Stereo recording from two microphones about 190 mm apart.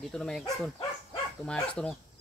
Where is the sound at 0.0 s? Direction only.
5° left (ahead or behind).